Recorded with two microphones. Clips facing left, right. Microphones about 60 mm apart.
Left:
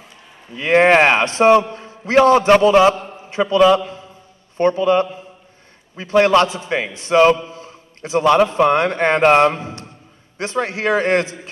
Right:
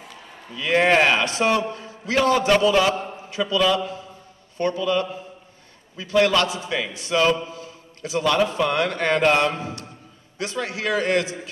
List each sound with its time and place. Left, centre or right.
0.6 s a man's voice: left